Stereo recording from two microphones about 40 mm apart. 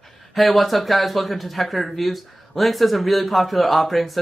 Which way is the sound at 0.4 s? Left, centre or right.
Centre.